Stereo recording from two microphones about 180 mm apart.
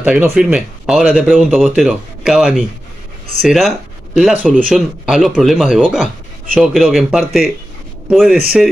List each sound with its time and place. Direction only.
0.0 s speech: 5° right (ahead or behind)